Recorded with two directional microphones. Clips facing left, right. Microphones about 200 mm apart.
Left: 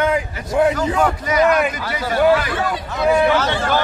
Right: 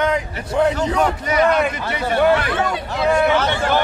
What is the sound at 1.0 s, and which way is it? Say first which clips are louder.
A man's voice: left 1 dB; 25° right (ahead or behind).